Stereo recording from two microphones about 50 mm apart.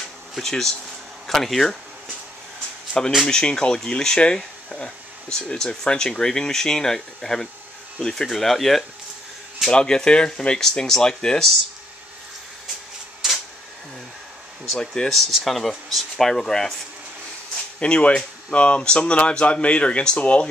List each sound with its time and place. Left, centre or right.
0.4 s speech: centre
2.9 s speech: centre
9.7 s speech: centre
13.2 s a sound: centre
14.8 s speech: centre
15.1 s speech: centre
17.7 s speech: left